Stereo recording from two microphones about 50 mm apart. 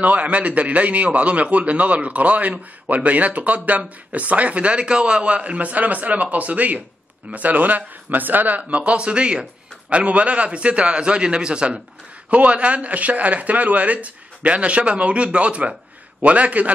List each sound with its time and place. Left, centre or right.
0.0 s a man's voice: right